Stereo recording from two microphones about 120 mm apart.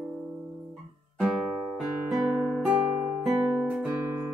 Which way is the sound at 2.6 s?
10° right (ahead or behind).